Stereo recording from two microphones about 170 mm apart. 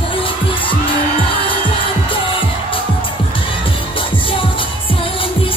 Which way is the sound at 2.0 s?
30° left (ahead or behind).